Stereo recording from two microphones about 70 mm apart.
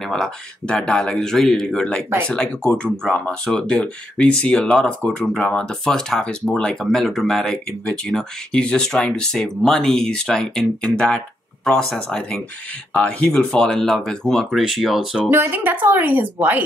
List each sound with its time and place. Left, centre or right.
0.1 s speech: centre
15.2 s speech: right